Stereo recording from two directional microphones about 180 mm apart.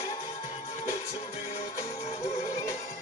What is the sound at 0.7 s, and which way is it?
Music, 40° left (ahead or behind).